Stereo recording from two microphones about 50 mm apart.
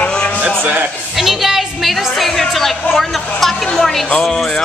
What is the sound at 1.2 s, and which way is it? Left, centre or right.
A woman's voice, centre.